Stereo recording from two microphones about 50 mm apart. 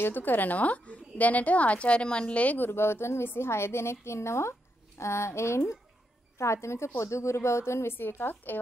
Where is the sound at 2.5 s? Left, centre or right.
Left.